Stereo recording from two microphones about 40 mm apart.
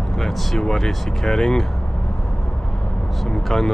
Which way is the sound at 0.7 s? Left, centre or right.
Centre.